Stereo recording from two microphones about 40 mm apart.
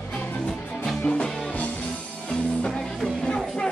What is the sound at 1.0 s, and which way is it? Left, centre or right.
Music, left.